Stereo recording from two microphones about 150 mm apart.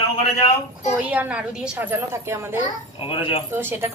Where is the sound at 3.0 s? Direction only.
35° left (ahead or behind).